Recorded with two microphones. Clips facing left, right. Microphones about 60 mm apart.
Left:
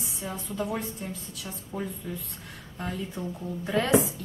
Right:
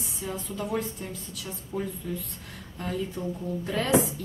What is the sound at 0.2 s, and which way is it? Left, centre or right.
A woman's voice, centre.